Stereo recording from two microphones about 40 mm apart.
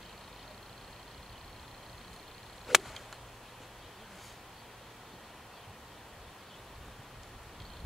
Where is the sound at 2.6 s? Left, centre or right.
Centre.